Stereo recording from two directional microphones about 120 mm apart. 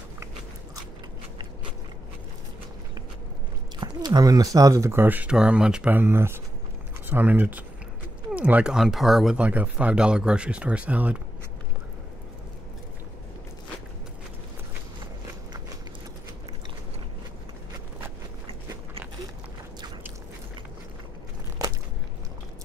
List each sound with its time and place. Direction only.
3.8 s speech: 35° right (ahead or behind); by 11.1 s 10° right (ahead or behind)